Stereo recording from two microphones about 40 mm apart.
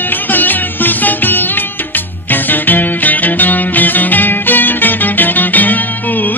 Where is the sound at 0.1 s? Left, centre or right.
Left.